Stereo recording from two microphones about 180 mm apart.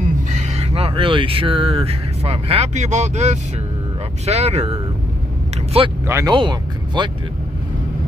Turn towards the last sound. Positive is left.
turn(degrees=-25)  # may be behind; listen again after turning